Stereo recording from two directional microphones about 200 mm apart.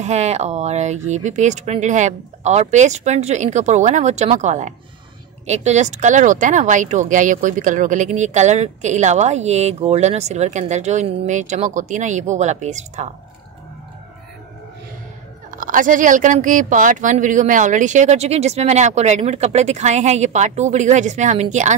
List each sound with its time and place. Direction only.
0.0 s speech: 35° right (ahead or behind)
15.5 s speech: 40° right (ahead or behind)